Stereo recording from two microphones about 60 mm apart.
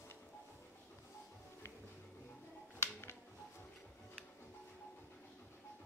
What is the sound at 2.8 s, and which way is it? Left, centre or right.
Music, left.